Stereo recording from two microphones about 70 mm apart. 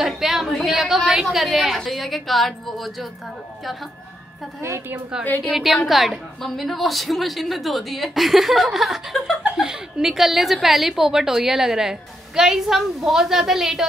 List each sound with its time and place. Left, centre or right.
0.0 s a woman's voice: centre
4.6 s a woman's voice: right
5.4 s a woman's voice: centre